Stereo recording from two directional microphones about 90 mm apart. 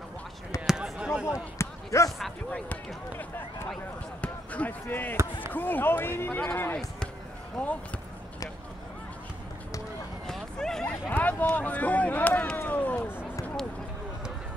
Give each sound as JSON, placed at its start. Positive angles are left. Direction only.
{"t": 0.7, "sound": "basketball bounce", "side_deg": -5}
{"t": 1.6, "sound": "basketball bounce", "side_deg": 35}
{"t": 2.5, "sound": "basketball bounce", "side_deg": 20}
{"t": 5.5, "sound": "speech", "side_deg": 20}
{"t": 7.6, "sound": "speech", "side_deg": 5}
{"t": 10.2, "sound": "a sound", "side_deg": 5}
{"t": 11.1, "sound": "a sound", "side_deg": 20}
{"t": 12.6, "sound": "run", "side_deg": 20}